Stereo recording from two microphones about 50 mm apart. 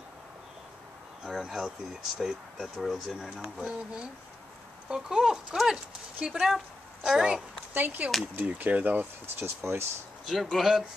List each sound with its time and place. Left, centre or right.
1.2 s speech: centre
6.1 s speech: right
6.4 s speech: centre
7.7 s speech: right
9.6 s speech: right
10.2 s speech: centre